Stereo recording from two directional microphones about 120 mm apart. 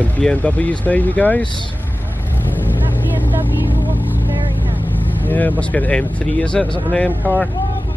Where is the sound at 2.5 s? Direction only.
15° left (ahead or behind).